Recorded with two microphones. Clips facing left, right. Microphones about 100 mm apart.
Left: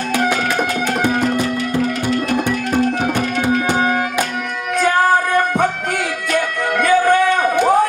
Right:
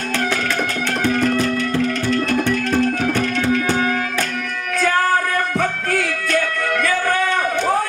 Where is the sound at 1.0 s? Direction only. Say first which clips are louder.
Right 1 dB; 15° left (ahead or behind).